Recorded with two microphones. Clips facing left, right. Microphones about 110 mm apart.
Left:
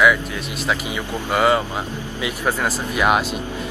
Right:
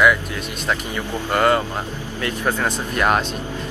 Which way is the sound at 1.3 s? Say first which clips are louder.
Even; 5° left (ahead or behind).